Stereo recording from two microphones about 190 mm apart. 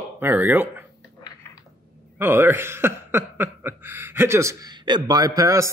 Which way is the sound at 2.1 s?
10° right (ahead or behind).